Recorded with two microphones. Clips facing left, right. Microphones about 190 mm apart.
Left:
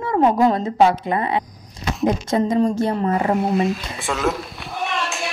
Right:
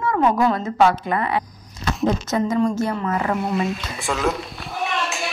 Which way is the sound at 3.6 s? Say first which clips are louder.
Left 2 dB; centre (ahead or behind).